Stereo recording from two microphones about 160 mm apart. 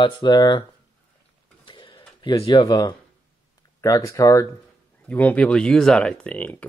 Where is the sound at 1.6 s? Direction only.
30° left (ahead or behind).